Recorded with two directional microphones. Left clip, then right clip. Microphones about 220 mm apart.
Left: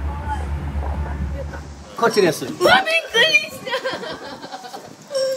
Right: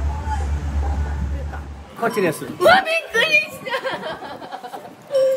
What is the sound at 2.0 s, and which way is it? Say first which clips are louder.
Speech: left 4 dB; 40° left (ahead or behind).